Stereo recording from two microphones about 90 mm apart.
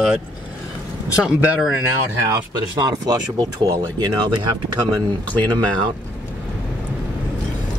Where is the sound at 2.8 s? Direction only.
45° right (ahead or behind).